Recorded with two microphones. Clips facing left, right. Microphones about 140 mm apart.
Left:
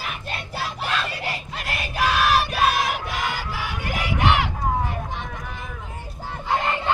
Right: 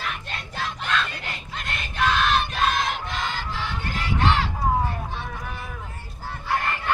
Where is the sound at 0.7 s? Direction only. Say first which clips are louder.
Right 1 dB; 10° left (ahead or behind).